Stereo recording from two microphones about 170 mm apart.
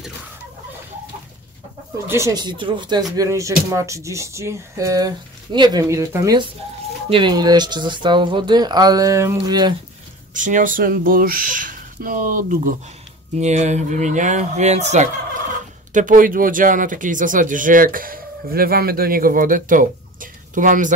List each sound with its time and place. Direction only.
2.0 s speech: 15° right (ahead or behind)
10.3 s speech: 50° right (ahead or behind)
13.4 s speech: 40° right (ahead or behind)